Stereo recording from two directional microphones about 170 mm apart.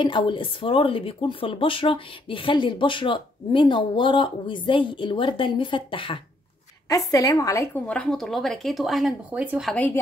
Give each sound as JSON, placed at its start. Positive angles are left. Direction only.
{"t": 0.0, "sound": "speech", "side_deg": 30}
{"t": 7.8, "sound": "speech", "side_deg": 5}
{"t": 9.7, "sound": "a woman's voice", "side_deg": 10}